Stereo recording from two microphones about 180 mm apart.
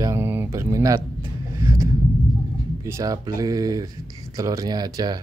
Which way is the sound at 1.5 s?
15° right (ahead or behind).